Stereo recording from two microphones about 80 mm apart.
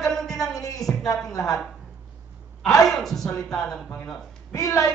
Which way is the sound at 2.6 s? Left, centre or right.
Centre.